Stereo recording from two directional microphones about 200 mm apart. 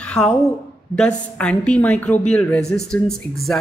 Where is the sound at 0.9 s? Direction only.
5° left (ahead or behind).